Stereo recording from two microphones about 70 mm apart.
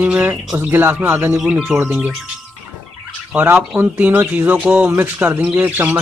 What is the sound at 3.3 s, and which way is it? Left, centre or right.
A man's voice, right.